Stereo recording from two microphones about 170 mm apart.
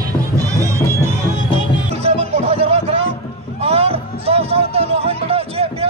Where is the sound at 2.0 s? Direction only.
35° right (ahead or behind).